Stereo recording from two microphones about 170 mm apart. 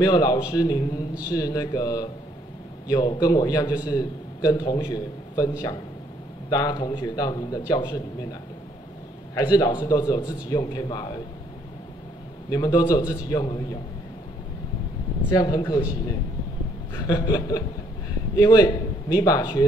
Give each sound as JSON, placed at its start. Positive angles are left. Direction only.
{"t": 0.0, "sound": "a man's voice", "side_deg": 25}
{"t": 6.5, "sound": "a man's voice", "side_deg": 25}
{"t": 12.4, "sound": "a man's voice", "side_deg": 20}
{"t": 15.3, "sound": "a man's voice", "side_deg": 25}
{"t": 16.9, "sound": "a man's voice", "side_deg": 20}